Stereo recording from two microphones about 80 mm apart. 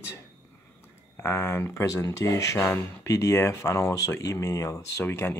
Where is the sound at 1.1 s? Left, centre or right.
Left.